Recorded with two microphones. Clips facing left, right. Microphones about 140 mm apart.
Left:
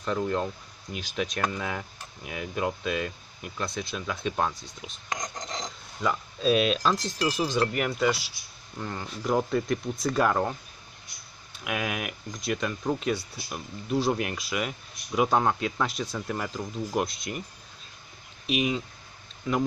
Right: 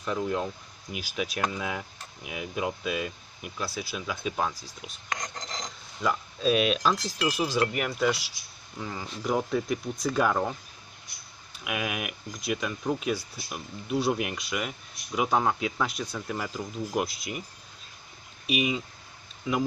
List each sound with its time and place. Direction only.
0.0 s speech: 5° right (ahead or behind)
5.1 s a sound: 20° left (ahead or behind)
5.9 s speech: centre (ahead or behind)
11.6 s speech: 5° right (ahead or behind)
18.5 s speech: 5° right (ahead or behind)